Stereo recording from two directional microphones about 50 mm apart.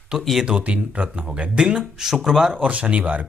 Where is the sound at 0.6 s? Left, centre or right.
Right; by 2.5 s centre.